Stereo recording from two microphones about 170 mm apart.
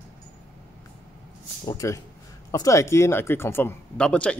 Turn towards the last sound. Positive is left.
turn(degrees=5)  # may be behind; listen again after turning